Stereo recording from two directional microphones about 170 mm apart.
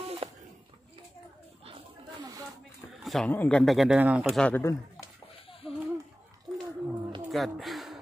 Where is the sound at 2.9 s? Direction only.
Centre (ahead or behind).